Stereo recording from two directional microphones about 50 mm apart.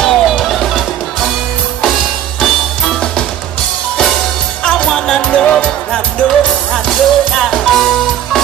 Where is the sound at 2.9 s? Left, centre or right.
Centre.